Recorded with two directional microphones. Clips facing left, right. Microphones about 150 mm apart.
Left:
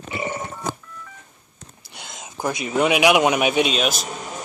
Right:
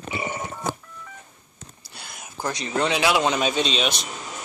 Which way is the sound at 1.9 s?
20° left (ahead or behind).